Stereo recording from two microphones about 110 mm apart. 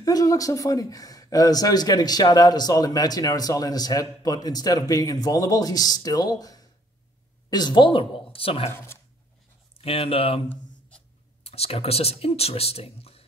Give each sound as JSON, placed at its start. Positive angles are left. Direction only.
{"t": 0.0, "sound": "speech", "side_deg": 30}
{"t": 8.7, "sound": "speech", "side_deg": 25}
{"t": 9.8, "sound": "speech", "side_deg": 60}
{"t": 11.4, "sound": "speech", "side_deg": 65}